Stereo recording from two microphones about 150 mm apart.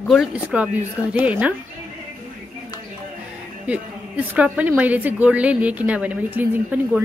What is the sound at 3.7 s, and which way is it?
A woman's voice, 10° right (ahead or behind).